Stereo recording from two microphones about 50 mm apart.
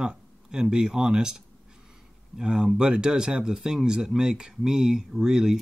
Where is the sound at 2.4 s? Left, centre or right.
Centre.